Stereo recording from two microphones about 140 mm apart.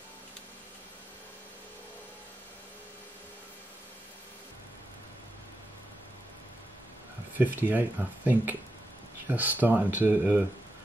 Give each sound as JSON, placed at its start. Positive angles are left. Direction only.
{"t": 7.5, "sound": "speech", "side_deg": -10}